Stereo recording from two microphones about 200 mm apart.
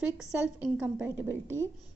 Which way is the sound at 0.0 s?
5° right (ahead or behind).